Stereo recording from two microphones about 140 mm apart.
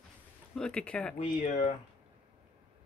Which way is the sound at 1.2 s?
60° left (ahead or behind).